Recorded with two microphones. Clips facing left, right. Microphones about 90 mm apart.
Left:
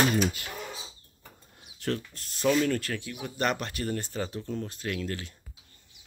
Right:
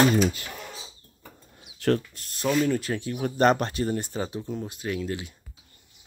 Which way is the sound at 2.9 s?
35° right (ahead or behind).